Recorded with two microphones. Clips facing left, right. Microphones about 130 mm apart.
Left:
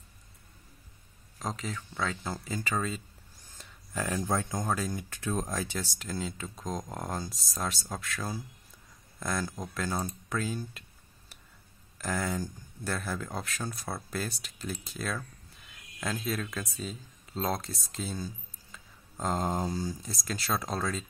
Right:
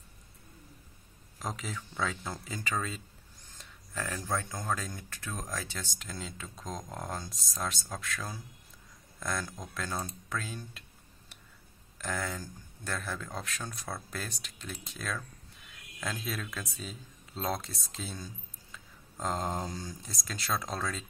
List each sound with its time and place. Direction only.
1.4 s speech: 5° right (ahead or behind)
3.9 s speech: 15° left (ahead or behind)
4.7 s speech: 10° left (ahead or behind)
5.1 s speech: 25° left (ahead or behind)
5.9 s speech: centre (ahead or behind)
12.0 s speech: 5° left (ahead or behind)